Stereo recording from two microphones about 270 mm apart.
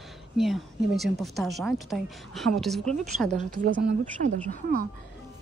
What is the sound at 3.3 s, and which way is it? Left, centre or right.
A woman's voice, right.